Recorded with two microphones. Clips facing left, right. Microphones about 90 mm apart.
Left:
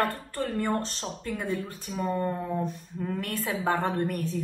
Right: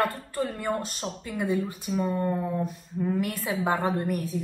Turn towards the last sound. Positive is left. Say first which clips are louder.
# right 1 dB
turn(degrees=-5)  # may be behind; listen again after turning